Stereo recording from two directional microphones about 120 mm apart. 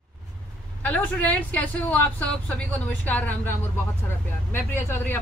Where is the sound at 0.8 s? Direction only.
10° left (ahead or behind).